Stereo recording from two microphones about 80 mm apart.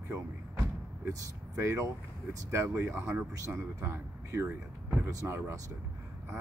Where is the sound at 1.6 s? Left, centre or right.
Right.